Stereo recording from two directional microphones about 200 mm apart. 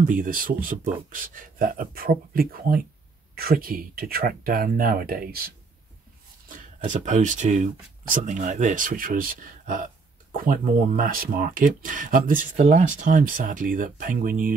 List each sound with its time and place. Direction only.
0.0 s speech: 40° right (ahead or behind)
6.8 s speech: 35° right (ahead or behind)